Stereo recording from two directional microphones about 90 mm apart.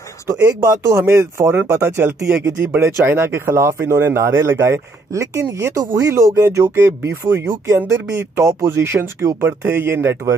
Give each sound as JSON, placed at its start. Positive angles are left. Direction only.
{"t": 0.3, "sound": "speech", "side_deg": -40}
{"t": 9.5, "sound": "speech", "side_deg": -20}